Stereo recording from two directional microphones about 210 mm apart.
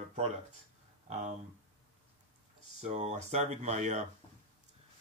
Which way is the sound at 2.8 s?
35° right (ahead or behind).